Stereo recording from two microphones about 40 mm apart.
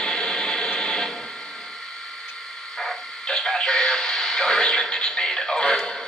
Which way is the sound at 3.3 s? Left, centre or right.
Centre.